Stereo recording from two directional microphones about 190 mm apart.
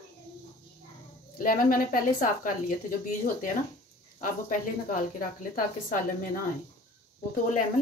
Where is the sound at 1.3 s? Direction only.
45° left (ahead or behind).